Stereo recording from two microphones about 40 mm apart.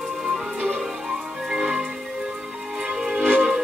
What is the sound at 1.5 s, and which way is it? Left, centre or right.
Music, centre.